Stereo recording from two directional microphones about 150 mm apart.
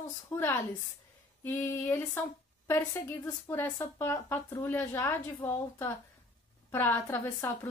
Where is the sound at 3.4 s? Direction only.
15° left (ahead or behind).